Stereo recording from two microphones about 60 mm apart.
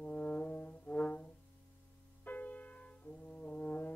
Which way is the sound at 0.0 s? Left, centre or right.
Left.